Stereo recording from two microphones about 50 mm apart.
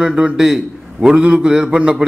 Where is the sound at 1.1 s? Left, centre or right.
Right.